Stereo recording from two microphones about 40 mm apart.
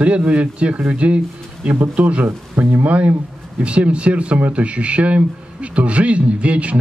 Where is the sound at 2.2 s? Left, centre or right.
Right.